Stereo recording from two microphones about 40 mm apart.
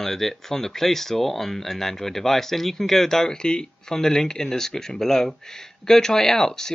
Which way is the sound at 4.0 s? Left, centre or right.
Centre.